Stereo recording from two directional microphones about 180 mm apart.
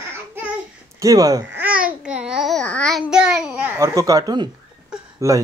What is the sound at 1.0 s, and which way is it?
Speech, 20° right (ahead or behind).